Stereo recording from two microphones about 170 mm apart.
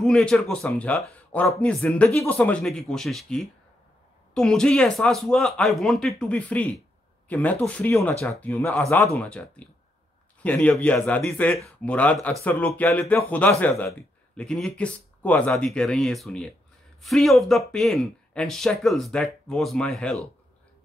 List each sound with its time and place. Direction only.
0.0 s speech: 5° left (ahead or behind)